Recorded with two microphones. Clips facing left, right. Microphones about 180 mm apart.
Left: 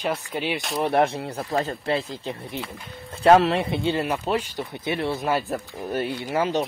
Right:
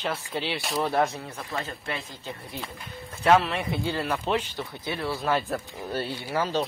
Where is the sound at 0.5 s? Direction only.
Centre (ahead or behind).